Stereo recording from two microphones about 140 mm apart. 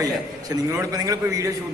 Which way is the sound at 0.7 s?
25° right (ahead or behind).